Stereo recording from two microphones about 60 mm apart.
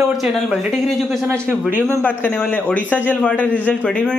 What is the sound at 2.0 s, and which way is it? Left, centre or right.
A man's voice, left.